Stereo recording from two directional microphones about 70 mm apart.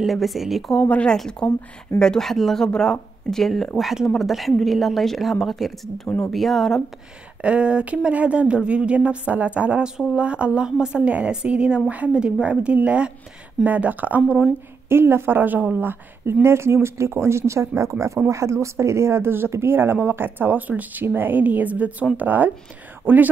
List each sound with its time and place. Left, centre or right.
0.0 s speech: centre
0.7 s speech: centre
7.4 s speech: centre
14.9 s speech: right